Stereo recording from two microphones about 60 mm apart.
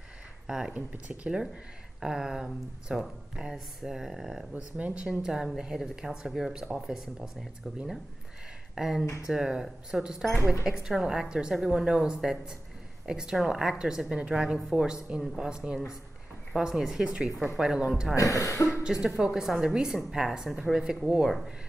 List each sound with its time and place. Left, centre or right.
0.5 s speech: centre
4.6 s speech: right
8.7 s speech: centre
9.0 s speech: left
9.3 s speech: centre
18.1 s speech: left
18.7 s speech: centre